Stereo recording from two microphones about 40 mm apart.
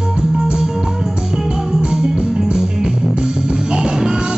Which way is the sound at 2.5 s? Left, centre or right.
Right.